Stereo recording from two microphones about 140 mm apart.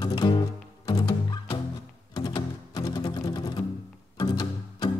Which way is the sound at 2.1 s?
30° left (ahead or behind).